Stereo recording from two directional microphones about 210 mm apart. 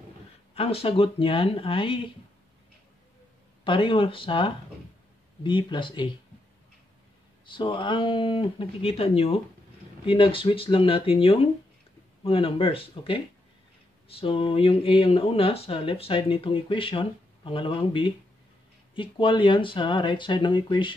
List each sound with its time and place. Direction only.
0.6 s speech: 25° left (ahead or behind)
3.6 s speech: 25° left (ahead or behind)
7.4 s speech: 25° left (ahead or behind)